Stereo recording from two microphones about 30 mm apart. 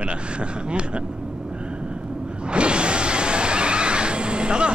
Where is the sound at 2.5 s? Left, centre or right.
Right.